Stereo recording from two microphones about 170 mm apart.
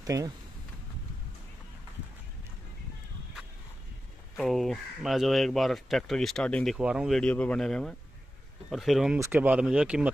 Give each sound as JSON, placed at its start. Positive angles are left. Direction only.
{"t": 0.0, "sound": "speech", "side_deg": -20}
{"t": 4.4, "sound": "speech", "side_deg": 0}